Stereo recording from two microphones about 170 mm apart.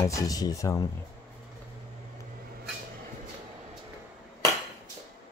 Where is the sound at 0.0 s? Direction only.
20° left (ahead or behind).